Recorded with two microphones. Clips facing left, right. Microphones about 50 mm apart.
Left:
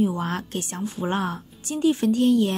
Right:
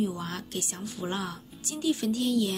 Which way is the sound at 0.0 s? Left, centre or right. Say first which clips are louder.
Left 7 dB; left.